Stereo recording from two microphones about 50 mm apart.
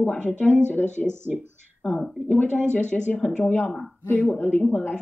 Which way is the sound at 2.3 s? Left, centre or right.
Left.